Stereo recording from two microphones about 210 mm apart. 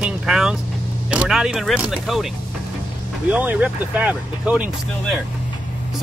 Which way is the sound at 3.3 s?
5° right (ahead or behind).